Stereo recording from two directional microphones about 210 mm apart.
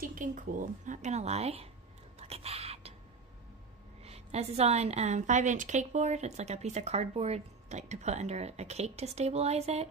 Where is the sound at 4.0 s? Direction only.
30° right (ahead or behind).